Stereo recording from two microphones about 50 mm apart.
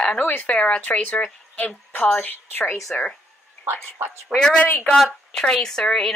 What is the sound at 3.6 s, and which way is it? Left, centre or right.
Speech, right.